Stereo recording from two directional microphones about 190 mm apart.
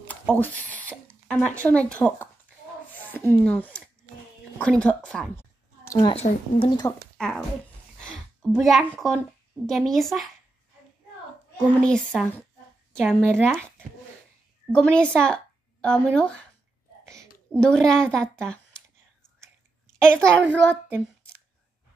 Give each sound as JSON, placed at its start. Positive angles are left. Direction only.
{"t": 0.1, "sound": "speech", "side_deg": 10}
{"t": 2.9, "sound": "a sound", "side_deg": 10}
{"t": 5.9, "sound": "a woman's voice", "side_deg": 25}
{"t": 7.2, "sound": "a woman's voice", "side_deg": 5}
{"t": 11.5, "sound": "a woman's voice", "side_deg": 5}
{"t": 14.7, "sound": "speech", "side_deg": 5}
{"t": 17.6, "sound": "a woman's voice", "side_deg": 5}
{"t": 20.1, "sound": "a woman's voice", "side_deg": 5}